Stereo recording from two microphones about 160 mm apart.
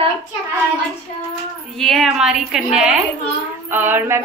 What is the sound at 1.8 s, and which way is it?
A woman's voice, centre (ahead or behind).